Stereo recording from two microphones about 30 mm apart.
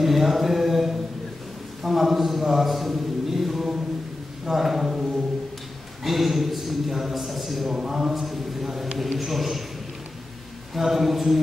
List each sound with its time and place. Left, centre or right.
0.0 s mantra: centre
1.8 s a sound: centre
4.5 s speech: centre
6.0 s a man's voice: centre
7.7 s speech: centre
8.2 s a sound: centre
8.9 s a man's voice: centre
10.7 s speech: centre